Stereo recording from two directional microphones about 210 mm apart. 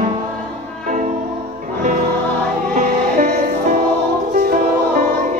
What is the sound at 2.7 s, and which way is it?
Music, 40° right (ahead or behind).